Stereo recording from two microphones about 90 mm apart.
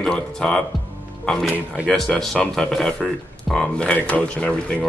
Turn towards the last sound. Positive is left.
turn(degrees=10)  # may be behind; listen again after turning